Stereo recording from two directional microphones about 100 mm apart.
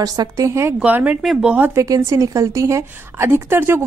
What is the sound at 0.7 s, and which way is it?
Speech, 15° right (ahead or behind).